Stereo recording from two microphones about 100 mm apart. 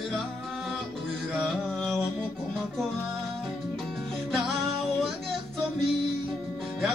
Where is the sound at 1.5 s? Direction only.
5° left (ahead or behind).